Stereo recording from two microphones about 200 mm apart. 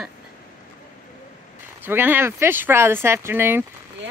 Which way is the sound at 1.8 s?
10° right (ahead or behind).